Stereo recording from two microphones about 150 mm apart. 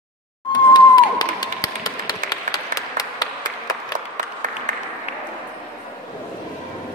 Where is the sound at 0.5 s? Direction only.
30° left (ahead or behind).